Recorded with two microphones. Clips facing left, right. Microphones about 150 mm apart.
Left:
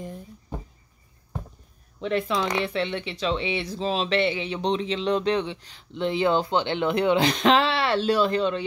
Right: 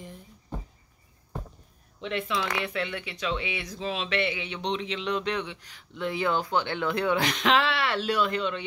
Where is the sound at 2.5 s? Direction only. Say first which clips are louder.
Left 5 dB; 30° left (ahead or behind).